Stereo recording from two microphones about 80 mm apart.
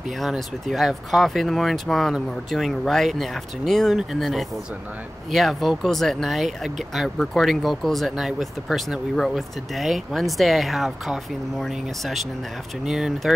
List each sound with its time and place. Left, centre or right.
0.2 s speech: centre